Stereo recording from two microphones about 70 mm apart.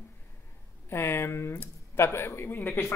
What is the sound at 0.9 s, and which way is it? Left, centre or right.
A man's voice, left.